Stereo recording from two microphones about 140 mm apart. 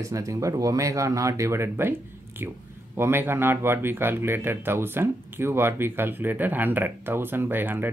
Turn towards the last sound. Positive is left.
turn(degrees=-15)  # may be behind; listen again after turning